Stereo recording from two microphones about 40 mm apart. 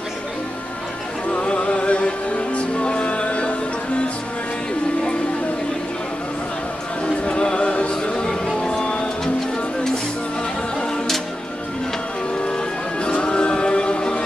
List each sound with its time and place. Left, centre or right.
1.3 s music: left
7.2 s music: left
13.0 s music: left